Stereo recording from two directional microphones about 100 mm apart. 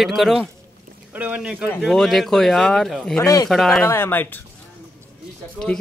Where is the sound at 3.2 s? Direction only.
35° left (ahead or behind).